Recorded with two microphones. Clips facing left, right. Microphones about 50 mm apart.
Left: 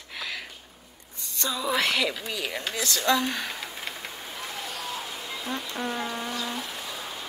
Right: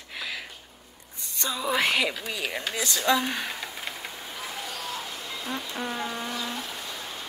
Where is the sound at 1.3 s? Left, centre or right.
Centre.